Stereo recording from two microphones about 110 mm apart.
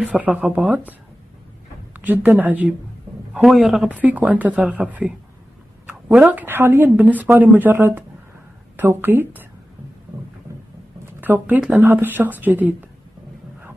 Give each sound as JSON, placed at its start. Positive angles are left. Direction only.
{"t": 0.0, "sound": "a woman's voice", "side_deg": -10}
{"t": 2.0, "sound": "a woman's voice", "side_deg": -15}
{"t": 3.3, "sound": "a man's voice", "side_deg": 0}
{"t": 4.0, "sound": "a woman's voice", "side_deg": -15}
{"t": 6.1, "sound": "a woman's voice", "side_deg": -15}
{"t": 11.1, "sound": "a woman's voice", "side_deg": -15}